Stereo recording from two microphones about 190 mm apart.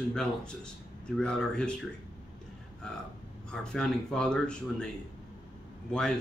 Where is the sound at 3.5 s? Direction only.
5° left (ahead or behind).